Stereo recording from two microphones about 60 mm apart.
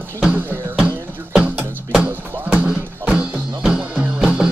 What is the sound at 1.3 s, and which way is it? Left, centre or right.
Music, centre.